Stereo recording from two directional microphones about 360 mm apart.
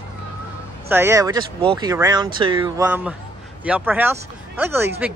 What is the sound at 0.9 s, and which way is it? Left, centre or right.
Speech, centre.